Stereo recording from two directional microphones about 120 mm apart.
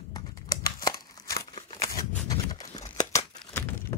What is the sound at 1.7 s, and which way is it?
Shuffling cards, 30° left (ahead or behind).